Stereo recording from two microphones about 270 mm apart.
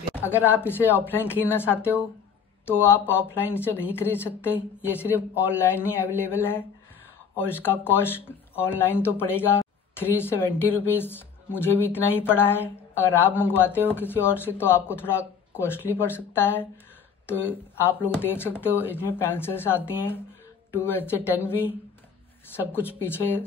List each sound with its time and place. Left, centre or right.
0.1 s speech: centre